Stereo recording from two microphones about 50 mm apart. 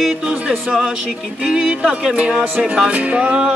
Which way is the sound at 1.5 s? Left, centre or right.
Centre.